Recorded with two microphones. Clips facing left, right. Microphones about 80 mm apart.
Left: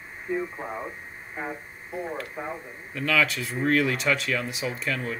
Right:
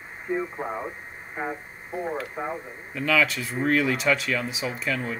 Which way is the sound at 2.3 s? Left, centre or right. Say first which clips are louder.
Right 3 dB; centre.